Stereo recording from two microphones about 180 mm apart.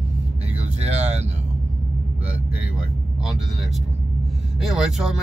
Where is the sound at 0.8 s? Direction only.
35° right (ahead or behind).